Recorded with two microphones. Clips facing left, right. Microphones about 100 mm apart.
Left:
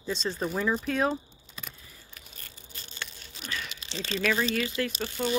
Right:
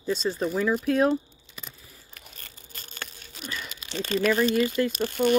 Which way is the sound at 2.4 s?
45° right (ahead or behind).